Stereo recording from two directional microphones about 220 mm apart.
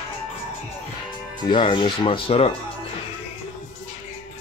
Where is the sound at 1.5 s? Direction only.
20° left (ahead or behind).